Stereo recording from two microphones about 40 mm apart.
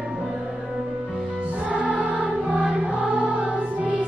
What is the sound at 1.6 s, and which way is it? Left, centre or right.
Music, right.